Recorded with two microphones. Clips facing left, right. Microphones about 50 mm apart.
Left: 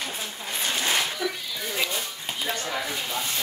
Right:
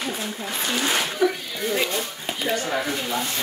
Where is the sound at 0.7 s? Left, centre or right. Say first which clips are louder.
Right 2 dB; right.